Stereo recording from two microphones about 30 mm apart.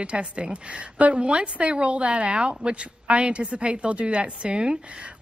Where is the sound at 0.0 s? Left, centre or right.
Right.